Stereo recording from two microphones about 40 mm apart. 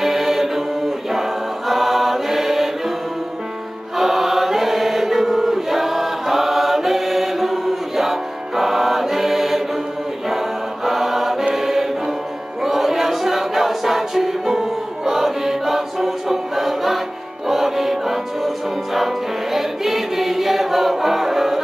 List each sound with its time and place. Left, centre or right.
0.0 s music: centre
1.7 s mantra: centre
4.0 s chant: centre
10.3 s choir: centre
12.6 s music: centre